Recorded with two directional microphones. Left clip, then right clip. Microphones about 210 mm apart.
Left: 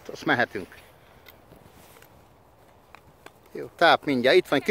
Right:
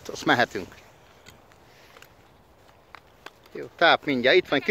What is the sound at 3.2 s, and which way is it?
Speech, 10° left (ahead or behind).